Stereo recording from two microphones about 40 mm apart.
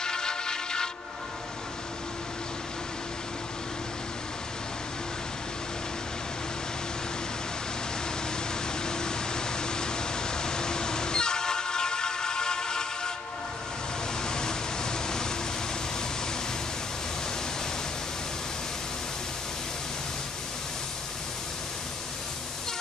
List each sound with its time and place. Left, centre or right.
0.0 s vehicle: centre
8.8 s a sound: centre
14.2 s vehicle: centre